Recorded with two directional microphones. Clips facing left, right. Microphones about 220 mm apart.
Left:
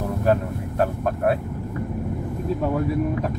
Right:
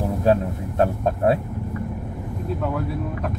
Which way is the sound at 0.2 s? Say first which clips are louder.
Right 1 dB; 25° right (ahead or behind).